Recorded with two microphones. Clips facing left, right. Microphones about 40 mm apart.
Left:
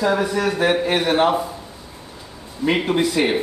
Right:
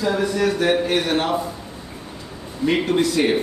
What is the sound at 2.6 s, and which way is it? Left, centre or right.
Speech, centre.